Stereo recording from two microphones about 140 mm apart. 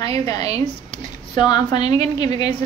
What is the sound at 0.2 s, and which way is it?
Speech, 25° left (ahead or behind).